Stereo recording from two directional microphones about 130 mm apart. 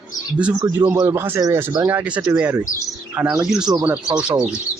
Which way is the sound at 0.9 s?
20° right (ahead or behind).